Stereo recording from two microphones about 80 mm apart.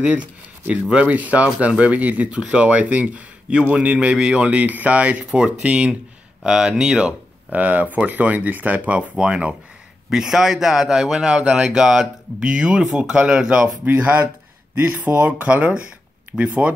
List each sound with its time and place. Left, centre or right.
0.0 s a man's voice: centre